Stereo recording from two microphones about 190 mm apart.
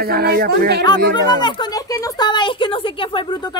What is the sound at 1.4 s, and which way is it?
A woman's voice, 20° left (ahead or behind).